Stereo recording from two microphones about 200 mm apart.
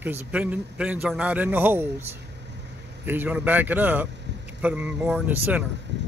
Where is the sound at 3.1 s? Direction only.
10° right (ahead or behind).